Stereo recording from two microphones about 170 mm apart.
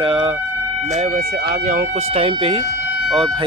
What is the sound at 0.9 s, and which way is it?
Speech, 40° right (ahead or behind).